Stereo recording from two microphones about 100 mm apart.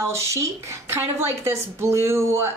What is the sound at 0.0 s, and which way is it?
Speech, 30° right (ahead or behind).